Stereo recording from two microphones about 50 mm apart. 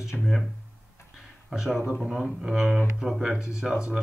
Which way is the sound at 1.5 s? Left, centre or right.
Centre.